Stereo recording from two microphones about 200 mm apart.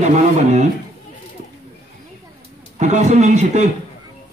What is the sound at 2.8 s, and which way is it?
Speech, 35° right (ahead or behind).